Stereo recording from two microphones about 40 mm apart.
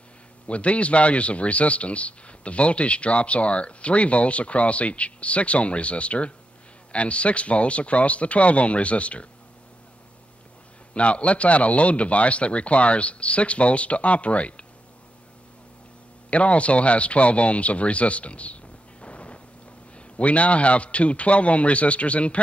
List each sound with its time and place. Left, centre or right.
0.5 s a man's voice: left
11.0 s a man's voice: left
16.3 s a man's voice: left